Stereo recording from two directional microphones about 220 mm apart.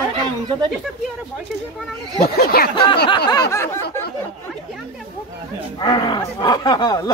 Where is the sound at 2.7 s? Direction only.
25° left (ahead or behind).